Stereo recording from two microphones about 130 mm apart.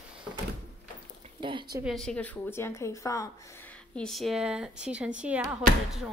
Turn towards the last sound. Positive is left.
turn(degrees=-5)  # may be behind; listen again after turning